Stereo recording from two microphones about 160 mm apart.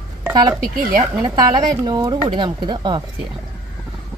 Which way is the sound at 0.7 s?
60° right (ahead or behind).